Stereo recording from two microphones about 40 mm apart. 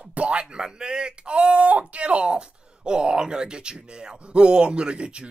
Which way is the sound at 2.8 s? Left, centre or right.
Right.